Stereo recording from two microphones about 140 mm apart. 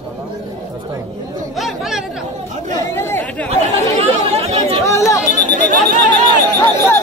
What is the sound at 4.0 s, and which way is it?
Chatter, 45° right (ahead or behind).